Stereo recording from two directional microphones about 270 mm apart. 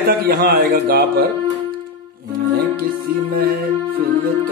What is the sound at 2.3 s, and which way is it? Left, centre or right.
Music, right.